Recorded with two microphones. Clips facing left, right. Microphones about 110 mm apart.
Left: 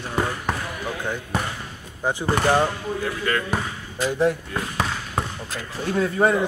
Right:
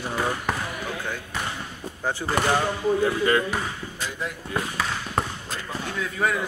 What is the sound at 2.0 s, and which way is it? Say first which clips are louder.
Speech: left 3 dB; 15° left (ahead or behind).